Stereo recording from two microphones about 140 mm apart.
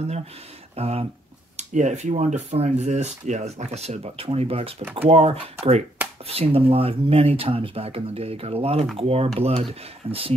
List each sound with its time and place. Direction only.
0.7 s speech: 45° right (ahead or behind)
1.6 s speech: 55° right (ahead or behind)